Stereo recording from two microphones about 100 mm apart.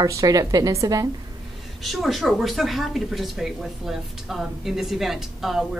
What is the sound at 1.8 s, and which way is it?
A woman's voice, centre (ahead or behind).